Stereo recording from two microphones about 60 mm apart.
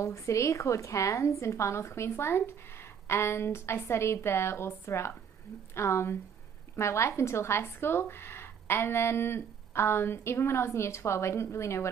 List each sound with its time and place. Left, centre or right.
0.0 s a woman's voice: left